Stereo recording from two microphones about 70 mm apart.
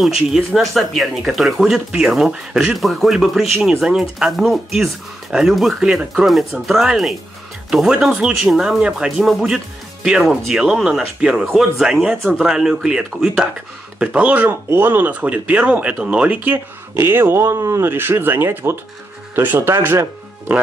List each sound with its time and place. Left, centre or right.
0.6 s speech: centre
2.8 s speech: centre; by 14.5 s right
14.5 s speech: right